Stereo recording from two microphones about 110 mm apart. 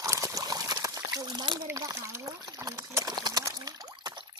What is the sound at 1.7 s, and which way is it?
Speech, 25° right (ahead or behind).